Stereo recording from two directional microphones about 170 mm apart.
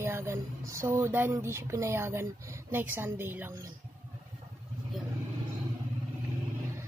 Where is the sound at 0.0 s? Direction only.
15° right (ahead or behind).